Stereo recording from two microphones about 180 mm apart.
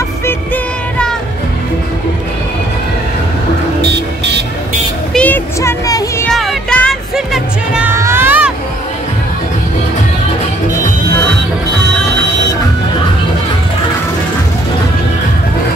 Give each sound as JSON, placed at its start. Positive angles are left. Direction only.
{"t": 3.8, "sound": "music", "side_deg": -70}
{"t": 5.1, "sound": "a sound", "side_deg": 10}
{"t": 6.3, "sound": "music", "side_deg": 0}